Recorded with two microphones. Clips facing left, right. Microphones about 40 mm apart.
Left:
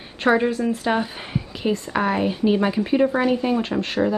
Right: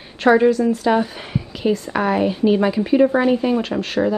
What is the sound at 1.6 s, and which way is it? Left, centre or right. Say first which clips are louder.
A woman's voice: right 3 dB; centre.